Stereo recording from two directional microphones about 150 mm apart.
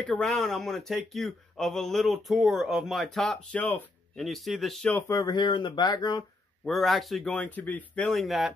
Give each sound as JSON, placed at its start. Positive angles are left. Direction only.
{"t": 0.0, "sound": "speech", "side_deg": 5}
{"t": 4.2, "sound": "speech", "side_deg": 0}
{"t": 5.1, "sound": "speech", "side_deg": 30}
{"t": 6.6, "sound": "speech", "side_deg": 0}